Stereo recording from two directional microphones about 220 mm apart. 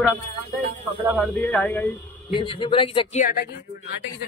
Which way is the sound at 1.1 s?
5° left (ahead or behind).